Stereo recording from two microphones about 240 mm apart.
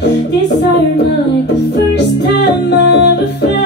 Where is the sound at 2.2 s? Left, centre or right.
Left.